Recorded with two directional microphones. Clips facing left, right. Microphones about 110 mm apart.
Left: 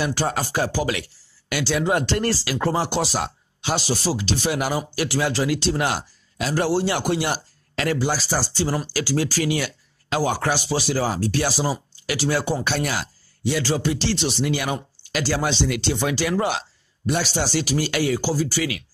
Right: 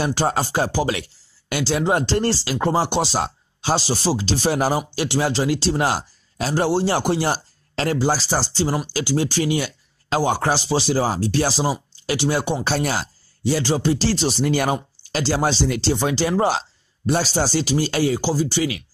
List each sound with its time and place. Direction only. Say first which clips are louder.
0.0 s speech: right 3 dB; 30° right (ahead or behind)
12.6 s speech: right 2 dB; 35° right (ahead or behind)